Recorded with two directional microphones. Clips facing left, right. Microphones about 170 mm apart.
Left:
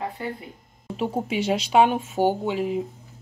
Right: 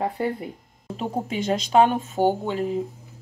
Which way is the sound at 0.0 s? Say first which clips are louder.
Right 5 dB; 50° right (ahead or behind).